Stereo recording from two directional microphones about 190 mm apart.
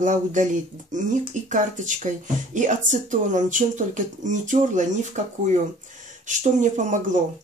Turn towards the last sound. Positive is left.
turn(degrees=-40)  # may be behind; listen again after turning